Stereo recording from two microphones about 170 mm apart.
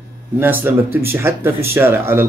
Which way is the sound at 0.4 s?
10° right (ahead or behind).